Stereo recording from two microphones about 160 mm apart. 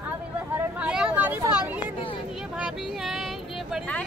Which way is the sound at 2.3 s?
5° right (ahead or behind).